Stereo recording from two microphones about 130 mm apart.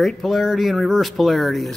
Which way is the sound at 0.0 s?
Centre (ahead or behind).